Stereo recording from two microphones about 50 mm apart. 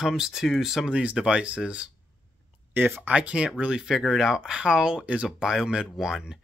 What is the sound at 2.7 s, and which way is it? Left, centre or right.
Speech, right.